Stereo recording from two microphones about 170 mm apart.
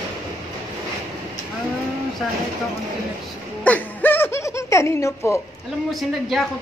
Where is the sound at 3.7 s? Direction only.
10° left (ahead or behind).